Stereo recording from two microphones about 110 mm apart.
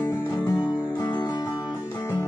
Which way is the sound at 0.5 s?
35° left (ahead or behind).